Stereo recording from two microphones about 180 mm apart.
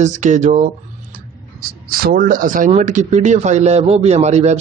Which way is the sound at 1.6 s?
55° right (ahead or behind).